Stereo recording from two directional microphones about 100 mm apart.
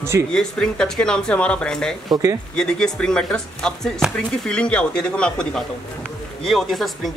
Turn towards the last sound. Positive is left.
turn(degrees=0)  # may be behind; listen again after turning